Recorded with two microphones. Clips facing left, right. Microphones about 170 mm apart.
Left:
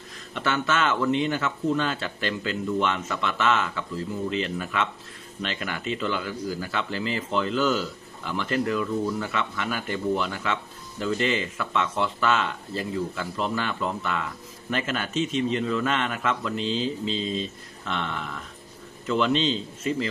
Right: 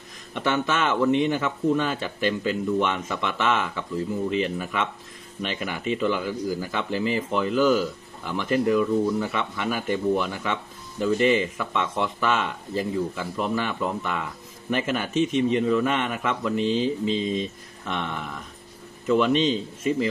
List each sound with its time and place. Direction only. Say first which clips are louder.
0.3 s speech: right 2 dB; 15° right (ahead or behind)
16.5 s speech: right 4 dB; 55° right (ahead or behind)
17.0 s speech: right 3 dB; 15° right (ahead or behind)